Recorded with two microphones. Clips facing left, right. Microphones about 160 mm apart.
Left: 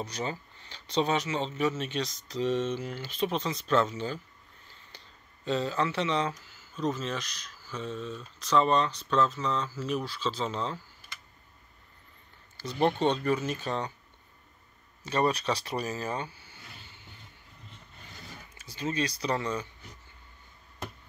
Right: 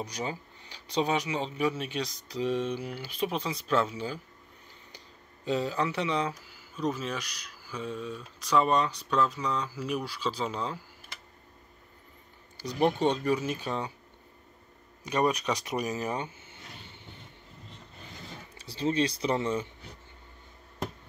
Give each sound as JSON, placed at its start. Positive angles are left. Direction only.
{"t": 0.0, "sound": "speech", "side_deg": -10}
{"t": 12.7, "sound": "speech", "side_deg": -10}
{"t": 15.0, "sound": "speech", "side_deg": -15}
{"t": 18.3, "sound": "speech", "side_deg": -30}